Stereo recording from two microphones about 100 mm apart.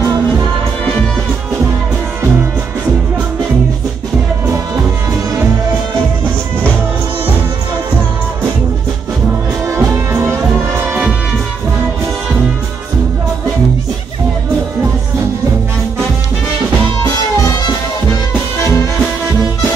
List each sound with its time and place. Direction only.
9.7 s music: 30° right (ahead or behind)